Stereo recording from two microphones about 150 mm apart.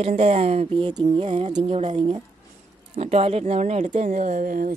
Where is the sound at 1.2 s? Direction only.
45° right (ahead or behind).